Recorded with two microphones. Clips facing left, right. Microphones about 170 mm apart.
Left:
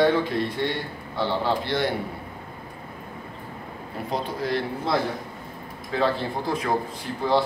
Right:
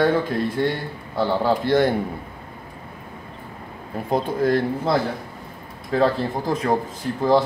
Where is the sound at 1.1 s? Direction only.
45° right (ahead or behind).